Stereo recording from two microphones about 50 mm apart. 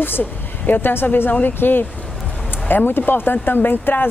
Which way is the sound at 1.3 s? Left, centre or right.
Left.